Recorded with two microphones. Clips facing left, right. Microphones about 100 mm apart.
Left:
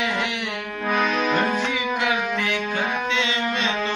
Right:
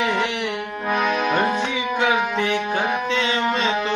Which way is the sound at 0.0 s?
15° right (ahead or behind).